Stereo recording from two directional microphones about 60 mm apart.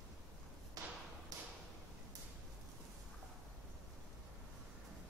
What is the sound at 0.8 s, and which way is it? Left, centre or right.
Tap, right.